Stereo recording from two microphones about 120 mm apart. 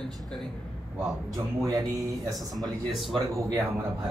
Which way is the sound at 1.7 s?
25° right (ahead or behind).